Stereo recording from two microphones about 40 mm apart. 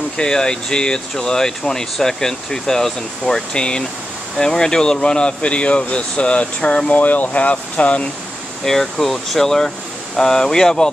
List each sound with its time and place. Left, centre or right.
0.2 s speech: centre
6.9 s speech: left
8.6 s speech: centre